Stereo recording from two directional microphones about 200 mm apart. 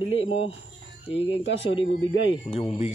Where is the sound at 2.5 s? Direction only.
30° left (ahead or behind).